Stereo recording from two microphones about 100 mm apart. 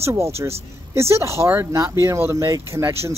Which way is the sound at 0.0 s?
30° right (ahead or behind).